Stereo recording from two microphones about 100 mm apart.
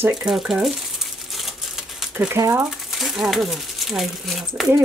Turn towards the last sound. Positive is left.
turn(degrees=0)  # may be behind; listen again after turning